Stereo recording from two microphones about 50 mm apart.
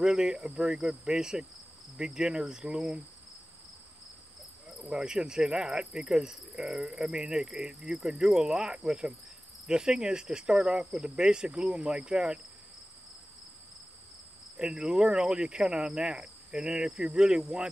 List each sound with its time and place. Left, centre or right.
0.0 s speech: centre
4.8 s speech: centre
14.6 s speech: centre